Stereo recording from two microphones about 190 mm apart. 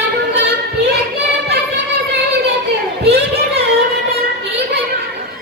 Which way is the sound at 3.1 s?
55° right (ahead or behind).